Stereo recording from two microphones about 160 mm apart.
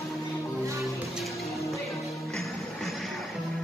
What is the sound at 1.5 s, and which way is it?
Music, 20° left (ahead or behind).